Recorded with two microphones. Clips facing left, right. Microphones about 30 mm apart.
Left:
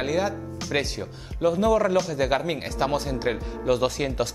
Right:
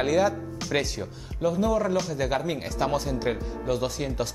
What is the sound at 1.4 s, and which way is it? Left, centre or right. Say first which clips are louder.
Speech: left 4 dB; left.